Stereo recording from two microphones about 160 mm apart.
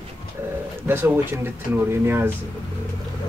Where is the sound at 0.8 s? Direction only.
10° right (ahead or behind).